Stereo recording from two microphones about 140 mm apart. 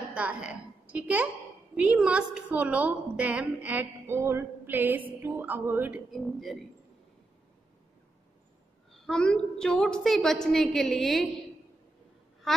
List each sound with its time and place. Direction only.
0.1 s a woman's voice: 10° right (ahead or behind)
6.2 s a woman's voice: centre (ahead or behind)
8.9 s a woman's voice: 5° left (ahead or behind)
12.5 s a sound: centre (ahead or behind)